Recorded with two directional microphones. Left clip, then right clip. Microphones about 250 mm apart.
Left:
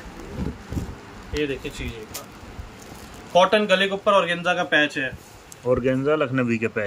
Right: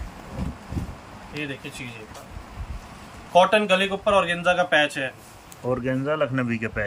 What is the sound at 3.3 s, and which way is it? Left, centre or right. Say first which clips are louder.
Speech: even; centre.